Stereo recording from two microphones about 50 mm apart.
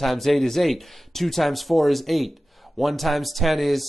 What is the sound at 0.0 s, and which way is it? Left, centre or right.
Speech, centre.